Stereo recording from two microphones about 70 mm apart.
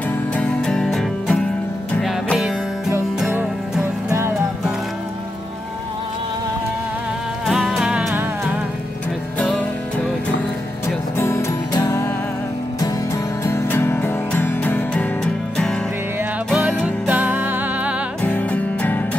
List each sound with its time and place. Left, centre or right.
0.6 s music: centre
7.4 s music: centre
8.1 s music: right
11.1 s music: left
13.1 s music: left
15.2 s music: centre
17.1 s music: right
18.2 s music: left